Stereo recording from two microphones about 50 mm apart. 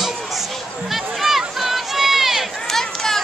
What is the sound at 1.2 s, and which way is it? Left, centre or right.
Run, centre.